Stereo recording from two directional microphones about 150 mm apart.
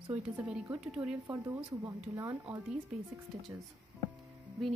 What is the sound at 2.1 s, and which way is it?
Speech, 15° right (ahead or behind).